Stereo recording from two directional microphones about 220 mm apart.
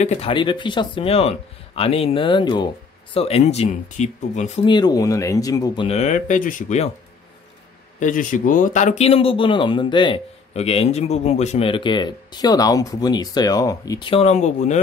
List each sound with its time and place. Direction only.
0.0 s a man's voice: 30° left (ahead or behind)
5.9 s speech: 30° left (ahead or behind)
8.0 s a man's voice: 35° left (ahead or behind)